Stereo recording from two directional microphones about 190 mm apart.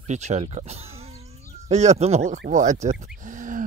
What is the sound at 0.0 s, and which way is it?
Speech, 35° right (ahead or behind).